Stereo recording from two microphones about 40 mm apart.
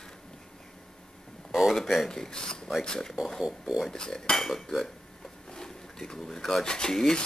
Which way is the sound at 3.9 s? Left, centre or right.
Centre.